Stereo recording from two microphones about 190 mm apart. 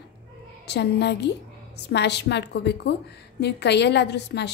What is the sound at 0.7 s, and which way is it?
A woman's voice, 60° left (ahead or behind).